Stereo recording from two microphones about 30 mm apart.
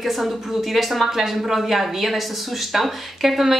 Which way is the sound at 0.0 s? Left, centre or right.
Centre.